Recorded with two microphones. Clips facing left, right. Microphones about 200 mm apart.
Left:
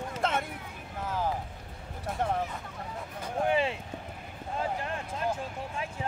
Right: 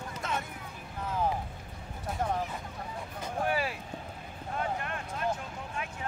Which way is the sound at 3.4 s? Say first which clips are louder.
Left 4 dB; 25° left (ahead or behind).